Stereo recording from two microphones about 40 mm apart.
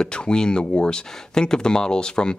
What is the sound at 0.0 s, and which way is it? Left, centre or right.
Speech, left.